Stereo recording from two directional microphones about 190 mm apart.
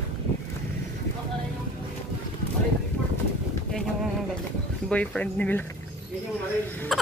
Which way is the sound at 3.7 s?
Centre (ahead or behind).